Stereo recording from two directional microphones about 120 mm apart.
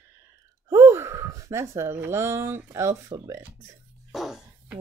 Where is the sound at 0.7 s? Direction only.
20° right (ahead or behind).